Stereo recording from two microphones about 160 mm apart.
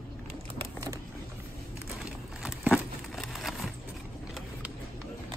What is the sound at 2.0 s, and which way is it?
Crumpling, centre (ahead or behind).